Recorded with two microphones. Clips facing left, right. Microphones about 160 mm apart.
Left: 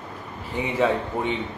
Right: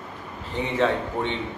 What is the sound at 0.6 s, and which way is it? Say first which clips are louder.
Speech: left 1 dB; 10° left (ahead or behind).